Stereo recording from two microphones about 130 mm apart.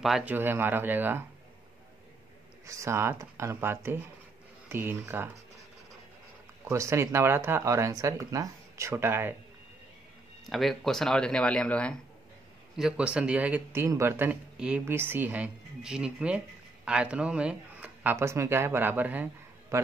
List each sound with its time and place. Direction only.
0.0 s speech: 5° right (ahead or behind)
0.3 s a man's voice: 15° right (ahead or behind)
2.6 s a man's voice: 25° right (ahead or behind)
6.6 s speech: 20° right (ahead or behind)
10.5 s speech: centre (ahead or behind)
12.7 s a man's voice: 5° right (ahead or behind)
19.7 s a man's voice: 25° right (ahead or behind)